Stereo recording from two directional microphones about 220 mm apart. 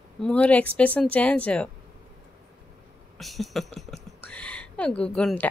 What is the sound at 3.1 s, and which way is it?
Speech, centre (ahead or behind).